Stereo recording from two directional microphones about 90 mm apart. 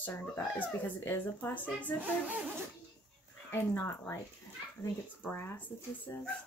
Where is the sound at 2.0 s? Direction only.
20° right (ahead or behind).